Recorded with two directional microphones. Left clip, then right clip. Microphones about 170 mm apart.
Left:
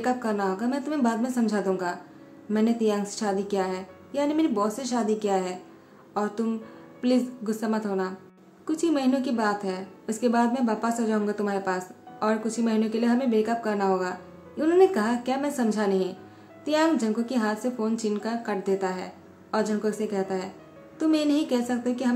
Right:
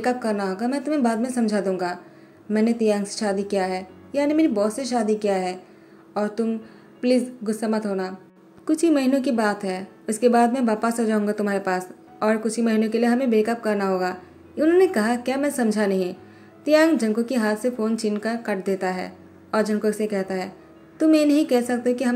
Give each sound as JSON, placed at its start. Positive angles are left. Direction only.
{"t": 0.0, "sound": "a woman's voice", "side_deg": -15}